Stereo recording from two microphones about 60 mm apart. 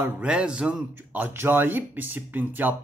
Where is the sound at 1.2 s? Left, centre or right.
Right.